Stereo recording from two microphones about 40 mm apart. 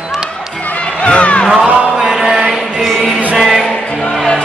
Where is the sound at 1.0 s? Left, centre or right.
Left.